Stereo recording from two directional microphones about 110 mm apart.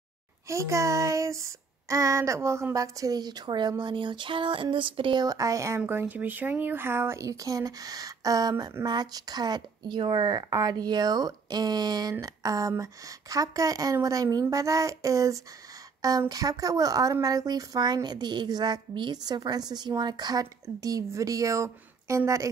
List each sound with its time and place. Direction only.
0.5 s speech: 25° right (ahead or behind); by 5.2 s 50° right (ahead or behind)
5.2 s speech: 30° right (ahead or behind)
5.8 s speech: 15° right (ahead or behind)